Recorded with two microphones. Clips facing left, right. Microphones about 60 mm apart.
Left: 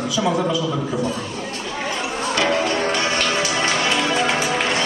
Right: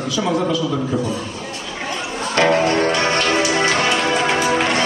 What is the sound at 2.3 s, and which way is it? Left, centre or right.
Music, right.